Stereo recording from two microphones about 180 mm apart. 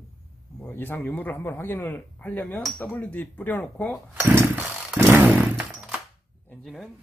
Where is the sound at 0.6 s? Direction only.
10° left (ahead or behind).